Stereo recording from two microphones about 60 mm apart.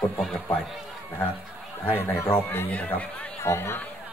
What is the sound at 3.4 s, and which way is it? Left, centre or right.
Speech, left.